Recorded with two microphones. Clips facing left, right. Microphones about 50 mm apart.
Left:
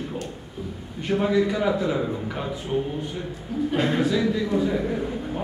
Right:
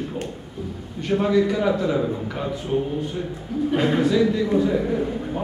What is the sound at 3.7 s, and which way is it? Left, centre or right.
A man's voice, centre.